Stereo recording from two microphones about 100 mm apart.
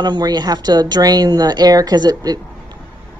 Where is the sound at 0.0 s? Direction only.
45° right (ahead or behind).